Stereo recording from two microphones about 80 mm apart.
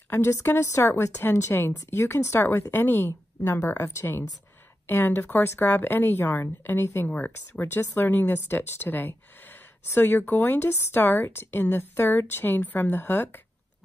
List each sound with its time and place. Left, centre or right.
0.1 s a woman's voice: left
7.1 s speech: left